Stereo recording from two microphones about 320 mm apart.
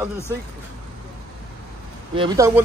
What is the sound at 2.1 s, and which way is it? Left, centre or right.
Speech, centre.